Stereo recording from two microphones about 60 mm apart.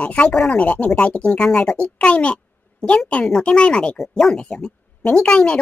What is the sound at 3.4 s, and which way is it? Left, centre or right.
Speech, centre.